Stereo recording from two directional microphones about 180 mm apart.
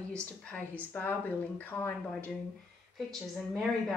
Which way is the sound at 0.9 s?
10° left (ahead or behind).